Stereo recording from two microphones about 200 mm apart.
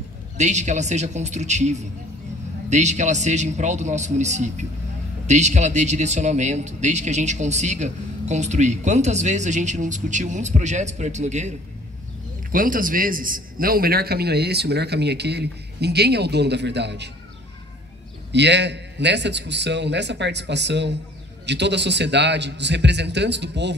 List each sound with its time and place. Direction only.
0.4 s a man's voice: 35° right (ahead or behind); by 17.1 s 60° right (ahead or behind)
18.3 s a man's voice: 60° right (ahead or behind)